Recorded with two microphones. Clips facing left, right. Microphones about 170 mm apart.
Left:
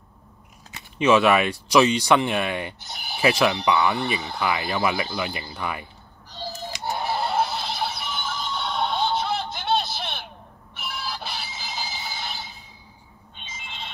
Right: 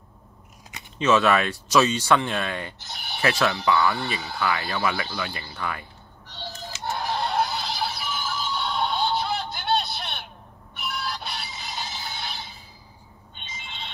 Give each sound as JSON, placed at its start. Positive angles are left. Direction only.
{"t": 0.9, "sound": "speech", "side_deg": 15}
{"t": 2.8, "sound": "speech", "side_deg": 0}
{"t": 3.2, "sound": "speech", "side_deg": 15}
{"t": 6.2, "sound": "a sound", "side_deg": 0}